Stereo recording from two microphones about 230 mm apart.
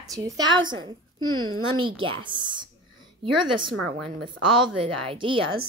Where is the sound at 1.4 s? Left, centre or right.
Right.